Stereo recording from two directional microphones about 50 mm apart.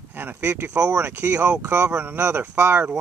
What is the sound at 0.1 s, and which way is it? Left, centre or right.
Speech, right.